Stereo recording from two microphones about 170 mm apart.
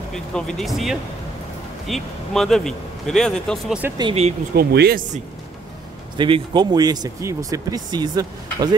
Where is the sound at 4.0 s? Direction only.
35° right (ahead or behind).